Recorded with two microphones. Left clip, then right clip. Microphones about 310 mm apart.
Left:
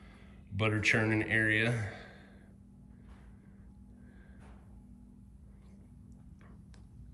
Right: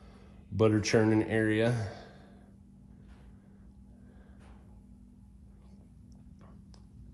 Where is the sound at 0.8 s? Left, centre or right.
Centre.